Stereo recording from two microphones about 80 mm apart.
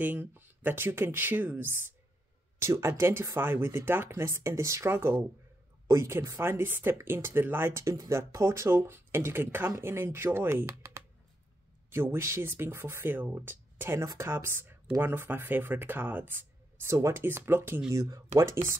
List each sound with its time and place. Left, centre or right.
0.0 s speech: right
11.9 s speech: right
18.3 s speech: right